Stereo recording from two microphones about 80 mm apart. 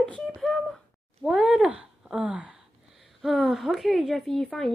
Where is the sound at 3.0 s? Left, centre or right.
Centre.